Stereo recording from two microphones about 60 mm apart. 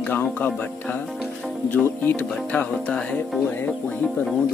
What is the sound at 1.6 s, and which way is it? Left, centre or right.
Speech, left.